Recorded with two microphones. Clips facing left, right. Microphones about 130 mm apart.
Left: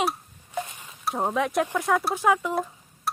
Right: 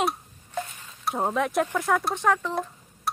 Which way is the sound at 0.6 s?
15° left (ahead or behind).